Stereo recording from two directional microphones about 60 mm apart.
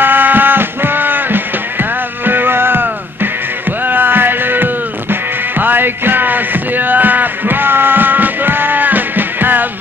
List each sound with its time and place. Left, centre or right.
0.0 s music: right